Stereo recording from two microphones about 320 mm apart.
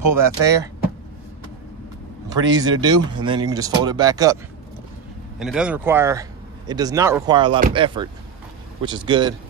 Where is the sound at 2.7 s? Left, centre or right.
Centre.